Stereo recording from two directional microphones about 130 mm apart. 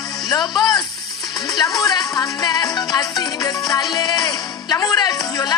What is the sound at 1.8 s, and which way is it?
Music, 30° left (ahead or behind).